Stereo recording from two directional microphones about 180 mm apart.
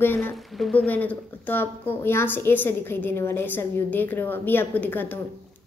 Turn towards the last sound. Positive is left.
turn(degrees=10)  # may be behind; listen again after turning